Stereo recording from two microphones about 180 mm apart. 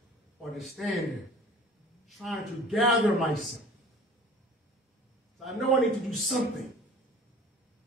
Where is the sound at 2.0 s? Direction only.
Centre (ahead or behind).